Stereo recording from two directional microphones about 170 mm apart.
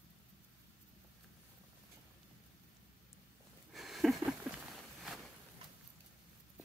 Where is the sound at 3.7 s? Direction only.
Centre (ahead or behind).